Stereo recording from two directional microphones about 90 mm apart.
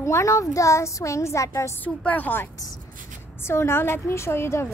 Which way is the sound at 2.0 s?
20° left (ahead or behind).